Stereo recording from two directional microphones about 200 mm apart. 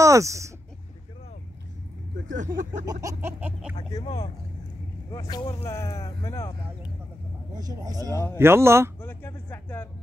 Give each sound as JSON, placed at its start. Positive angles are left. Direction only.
{"t": 0.0, "sound": "speech", "side_deg": -15}
{"t": 2.3, "sound": "speech", "side_deg": -40}
{"t": 2.9, "sound": "a sound", "side_deg": -15}
{"t": 5.3, "sound": "speech", "side_deg": 15}
{"t": 7.5, "sound": "speech", "side_deg": -20}
{"t": 8.4, "sound": "a sound", "side_deg": -10}
{"t": 9.0, "sound": "speech", "side_deg": 10}